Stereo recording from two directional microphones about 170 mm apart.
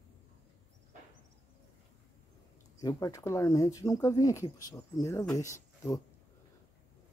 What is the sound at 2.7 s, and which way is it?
Speech, 20° left (ahead or behind).